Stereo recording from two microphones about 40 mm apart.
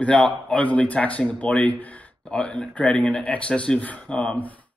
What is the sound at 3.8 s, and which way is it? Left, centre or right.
Speech, left.